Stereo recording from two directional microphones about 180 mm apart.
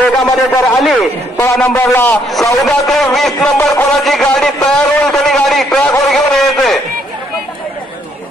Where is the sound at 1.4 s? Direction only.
15° left (ahead or behind).